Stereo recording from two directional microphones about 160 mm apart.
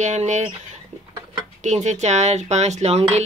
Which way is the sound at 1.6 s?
45° right (ahead or behind).